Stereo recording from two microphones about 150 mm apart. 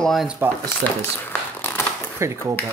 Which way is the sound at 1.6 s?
15° left (ahead or behind).